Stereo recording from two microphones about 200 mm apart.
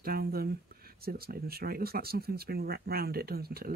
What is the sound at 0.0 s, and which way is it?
Speech, 50° right (ahead or behind).